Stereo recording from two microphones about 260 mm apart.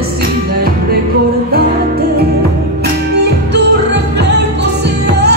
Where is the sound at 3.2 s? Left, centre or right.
Right.